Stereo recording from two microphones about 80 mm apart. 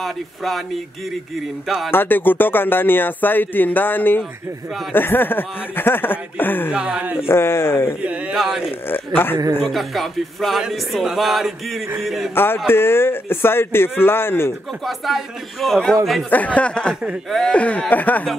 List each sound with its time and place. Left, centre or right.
0.0 s a sound: centre
1.9 s speech: left
6.7 s speech: centre
7.2 s speech: left
8.0 s speech: centre
8.8 s speech: left
9.6 s a sound: centre
12.6 s speech: left
14.9 s a sound: centre
16.3 s speech: centre